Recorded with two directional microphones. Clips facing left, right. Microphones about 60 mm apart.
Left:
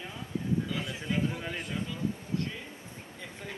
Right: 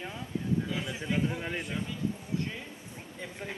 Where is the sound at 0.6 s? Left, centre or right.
Centre.